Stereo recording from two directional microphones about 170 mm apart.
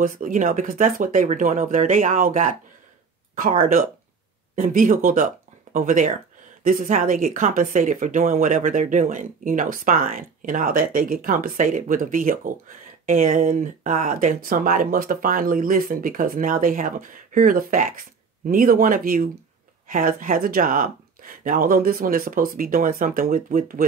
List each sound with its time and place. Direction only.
0.0 s speech: 50° right (ahead or behind)
4.6 s speech: 50° right (ahead or behind)